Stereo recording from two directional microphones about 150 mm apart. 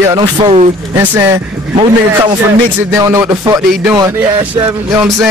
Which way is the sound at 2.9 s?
20° right (ahead or behind).